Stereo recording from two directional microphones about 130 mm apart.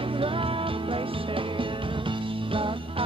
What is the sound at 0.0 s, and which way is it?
Music, 40° right (ahead or behind).